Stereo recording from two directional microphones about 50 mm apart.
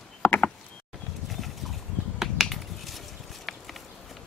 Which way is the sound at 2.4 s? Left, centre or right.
Centre.